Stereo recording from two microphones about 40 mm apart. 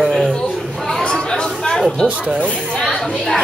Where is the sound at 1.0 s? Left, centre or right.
Left.